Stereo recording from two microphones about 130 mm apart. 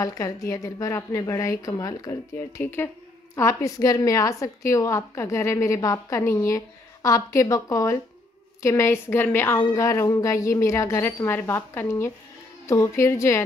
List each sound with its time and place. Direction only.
0.0 s a woman's voice: 25° left (ahead or behind)